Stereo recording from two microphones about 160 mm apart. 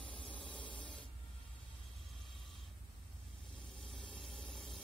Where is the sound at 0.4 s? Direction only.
30° left (ahead or behind).